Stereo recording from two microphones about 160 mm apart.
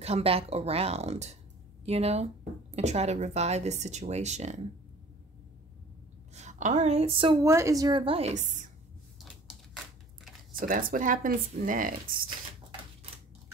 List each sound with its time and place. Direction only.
0.0 s a woman's voice: 40° right (ahead or behind)
6.3 s a woman's voice: 45° right (ahead or behind)
7.4 s a woman's voice: 20° right (ahead or behind); by 8.6 s 50° right (ahead or behind)
10.6 s speech: 60° right (ahead or behind)